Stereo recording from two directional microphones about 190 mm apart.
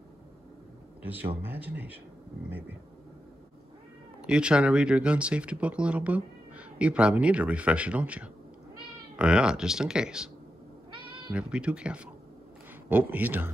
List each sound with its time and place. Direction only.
1.4 s speech: 10° right (ahead or behind)
4.3 s speech: 5° right (ahead or behind)
10.9 s owl: 25° right (ahead or behind)
11.3 s speech: 5° right (ahead or behind)